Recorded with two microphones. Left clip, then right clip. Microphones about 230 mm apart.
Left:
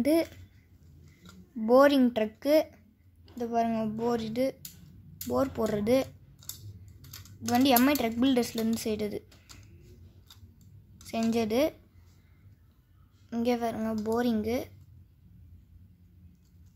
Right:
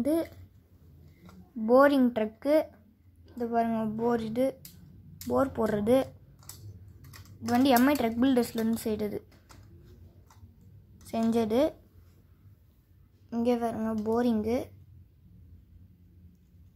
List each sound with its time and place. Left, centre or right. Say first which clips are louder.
0.0 s a child's voice: left 3 dB; centre
1.6 s a woman's voice: even; centre
7.1 s speech: even; centre
11.1 s a woman's voice: right 1 dB; centre
13.3 s a woman's voice: right 1 dB; centre